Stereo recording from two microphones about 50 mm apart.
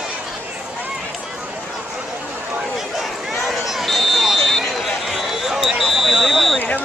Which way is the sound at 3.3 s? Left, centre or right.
Centre.